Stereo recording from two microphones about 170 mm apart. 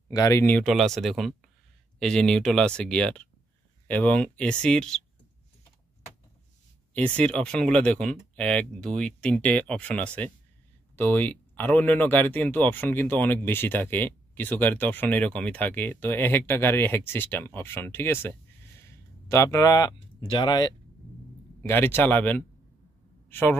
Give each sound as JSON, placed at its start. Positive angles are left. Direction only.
{"t": 0.1, "sound": "speech", "side_deg": 20}
{"t": 6.9, "sound": "speech", "side_deg": 5}
{"t": 21.6, "sound": "speech", "side_deg": 15}